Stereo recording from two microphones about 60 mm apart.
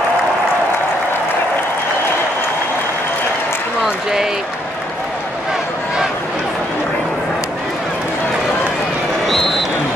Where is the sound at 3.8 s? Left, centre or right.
Centre.